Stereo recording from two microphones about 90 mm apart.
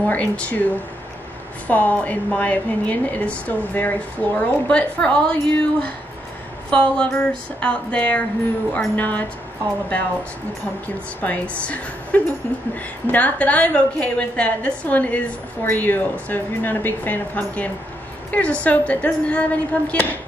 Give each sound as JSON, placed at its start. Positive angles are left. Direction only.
{"t": 0.0, "sound": "a woman's voice", "side_deg": 15}
{"t": 1.7, "sound": "a woman's voice", "side_deg": 15}
{"t": 11.1, "sound": "a woman's voice", "side_deg": 15}